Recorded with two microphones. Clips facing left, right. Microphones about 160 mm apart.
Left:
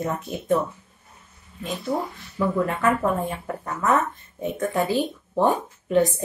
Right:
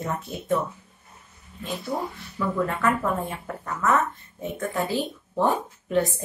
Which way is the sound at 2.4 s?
20° left (ahead or behind).